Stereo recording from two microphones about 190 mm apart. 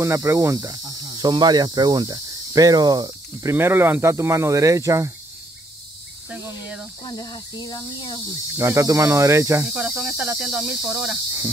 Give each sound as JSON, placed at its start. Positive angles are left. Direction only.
{"t": 0.0, "sound": "speech", "side_deg": -15}
{"t": 7.0, "sound": "speech", "side_deg": 25}
{"t": 8.5, "sound": "cricket", "side_deg": -15}